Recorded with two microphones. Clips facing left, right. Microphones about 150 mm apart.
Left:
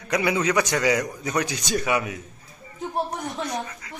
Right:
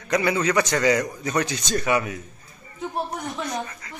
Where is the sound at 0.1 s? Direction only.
10° left (ahead or behind).